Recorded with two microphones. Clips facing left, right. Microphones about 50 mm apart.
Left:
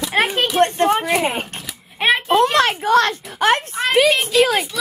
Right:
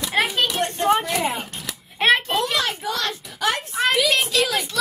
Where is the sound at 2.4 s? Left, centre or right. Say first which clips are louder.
Left 8 dB; left.